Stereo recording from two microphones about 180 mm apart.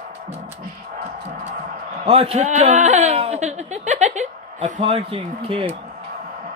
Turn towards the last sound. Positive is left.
turn(degrees=-30)  # may be behind; listen again after turning